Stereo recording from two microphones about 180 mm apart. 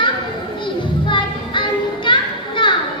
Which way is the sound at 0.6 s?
25° left (ahead or behind).